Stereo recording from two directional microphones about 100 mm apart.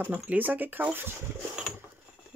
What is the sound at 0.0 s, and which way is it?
Speech, 15° right (ahead or behind).